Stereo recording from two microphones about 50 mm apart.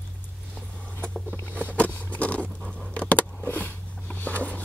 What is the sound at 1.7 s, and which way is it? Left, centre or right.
Vehicle, left.